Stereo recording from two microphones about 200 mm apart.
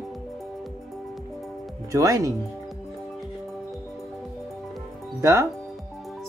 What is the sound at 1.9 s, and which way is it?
Speech, 15° right (ahead or behind).